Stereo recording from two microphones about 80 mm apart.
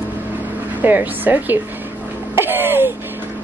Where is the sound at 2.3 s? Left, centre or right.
Right.